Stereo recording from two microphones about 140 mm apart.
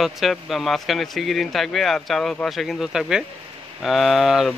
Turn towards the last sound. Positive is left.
turn(degrees=0)  # may be behind; listen again after turning